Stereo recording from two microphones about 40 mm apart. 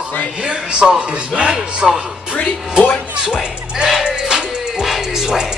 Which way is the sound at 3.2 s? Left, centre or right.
Centre.